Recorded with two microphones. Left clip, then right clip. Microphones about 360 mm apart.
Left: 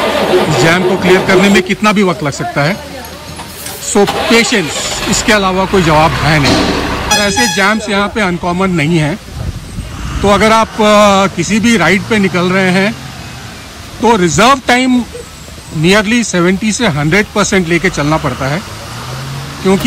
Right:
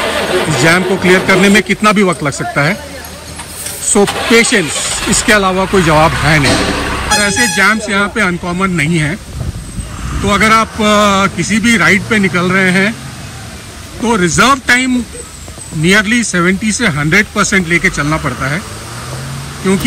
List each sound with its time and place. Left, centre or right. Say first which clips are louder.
0.0 s vehicle: left 3 dB; centre
1.0 s speech: even; centre
4.0 s speech: left 2 dB; centre
4.3 s speech: right 1 dB; centre
4.8 s vehicle: even; left
5.2 s speech: even; centre
6.8 s vehicle: left 1 dB; centre
7.2 s speech: even; centre
10.2 s speech: left 1 dB; centre
14.0 s speech: left 2 dB; centre